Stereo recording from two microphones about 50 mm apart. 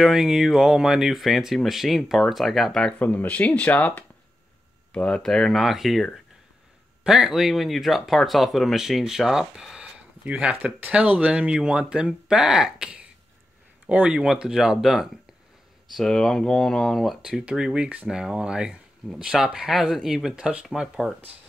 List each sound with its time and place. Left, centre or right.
0.0 s speech: centre
3.0 s speech: left
5.2 s speech: centre
5.6 s speech: centre
7.1 s speech: centre
10.2 s speech: right
13.8 s speech: right
14.2 s speech: centre
15.9 s speech: centre
17.2 s speech: centre
20.3 s speech: centre